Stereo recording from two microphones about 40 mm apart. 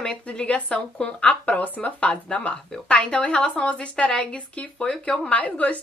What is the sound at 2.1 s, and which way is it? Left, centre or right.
A woman's voice, left.